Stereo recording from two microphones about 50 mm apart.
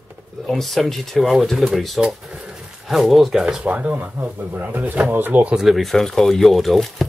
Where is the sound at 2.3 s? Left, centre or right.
Centre.